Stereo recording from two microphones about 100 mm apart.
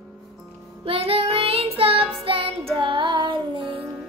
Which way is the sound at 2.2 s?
60° right (ahead or behind).